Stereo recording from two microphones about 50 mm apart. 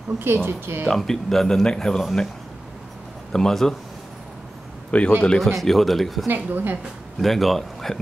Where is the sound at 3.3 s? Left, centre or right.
Centre.